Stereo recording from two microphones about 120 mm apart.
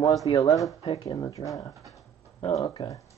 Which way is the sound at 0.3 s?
30° left (ahead or behind).